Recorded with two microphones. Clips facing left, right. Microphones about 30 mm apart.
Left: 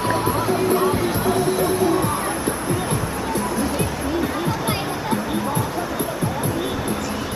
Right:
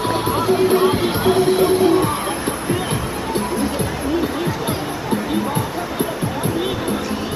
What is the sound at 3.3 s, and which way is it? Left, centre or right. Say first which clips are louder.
Music: right 3 dB; right.